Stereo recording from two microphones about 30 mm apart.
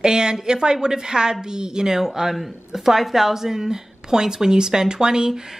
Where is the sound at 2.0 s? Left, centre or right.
Centre.